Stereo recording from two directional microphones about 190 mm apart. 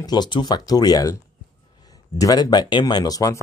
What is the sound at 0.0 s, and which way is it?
Speech, 20° left (ahead or behind).